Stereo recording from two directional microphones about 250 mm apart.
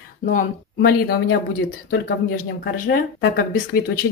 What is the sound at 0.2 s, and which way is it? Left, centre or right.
Speech, left.